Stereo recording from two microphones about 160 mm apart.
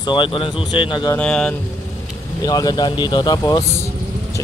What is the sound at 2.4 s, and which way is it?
Speech, 25° left (ahead or behind).